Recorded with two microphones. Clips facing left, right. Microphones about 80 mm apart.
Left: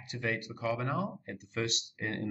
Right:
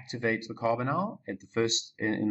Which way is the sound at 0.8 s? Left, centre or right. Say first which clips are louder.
Right 4 dB; right.